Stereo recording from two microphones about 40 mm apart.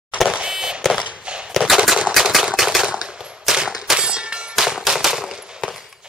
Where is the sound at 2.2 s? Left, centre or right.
Centre.